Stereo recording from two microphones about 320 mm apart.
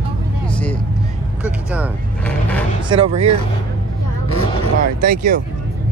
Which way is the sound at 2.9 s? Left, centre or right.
Centre.